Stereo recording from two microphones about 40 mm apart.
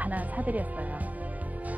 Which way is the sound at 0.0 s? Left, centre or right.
Right.